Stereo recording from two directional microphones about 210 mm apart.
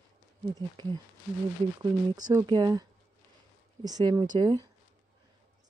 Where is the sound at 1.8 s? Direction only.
20° right (ahead or behind).